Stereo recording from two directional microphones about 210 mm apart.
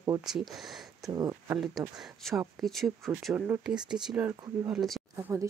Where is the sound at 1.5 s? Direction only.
Centre (ahead or behind).